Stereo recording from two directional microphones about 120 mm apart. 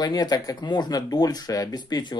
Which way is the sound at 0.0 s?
35° left (ahead or behind).